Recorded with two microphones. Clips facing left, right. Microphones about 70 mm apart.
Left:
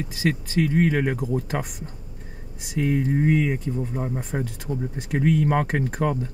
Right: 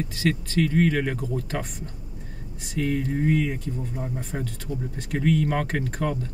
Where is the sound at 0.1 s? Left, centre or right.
Centre; by 4.2 s left.